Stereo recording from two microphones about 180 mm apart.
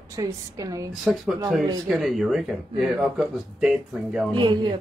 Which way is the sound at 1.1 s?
5° right (ahead or behind).